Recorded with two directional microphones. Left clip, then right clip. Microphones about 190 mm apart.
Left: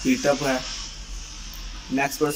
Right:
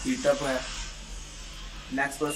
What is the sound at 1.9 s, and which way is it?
Speech, 10° left (ahead or behind).